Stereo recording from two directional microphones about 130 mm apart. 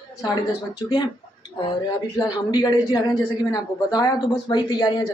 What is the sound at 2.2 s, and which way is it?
Speech, 30° left (ahead or behind).